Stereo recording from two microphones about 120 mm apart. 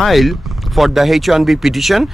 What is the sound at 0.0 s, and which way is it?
Speech, centre (ahead or behind).